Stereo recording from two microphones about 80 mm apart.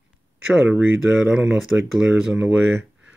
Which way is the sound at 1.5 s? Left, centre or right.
Centre.